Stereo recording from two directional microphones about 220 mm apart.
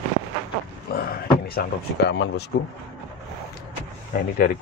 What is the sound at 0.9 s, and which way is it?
Speech, 45° left (ahead or behind).